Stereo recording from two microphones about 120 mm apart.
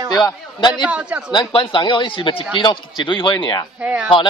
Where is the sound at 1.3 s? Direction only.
45° left (ahead or behind).